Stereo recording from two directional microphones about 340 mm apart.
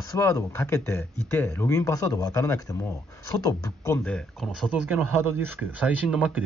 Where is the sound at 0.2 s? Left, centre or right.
Centre.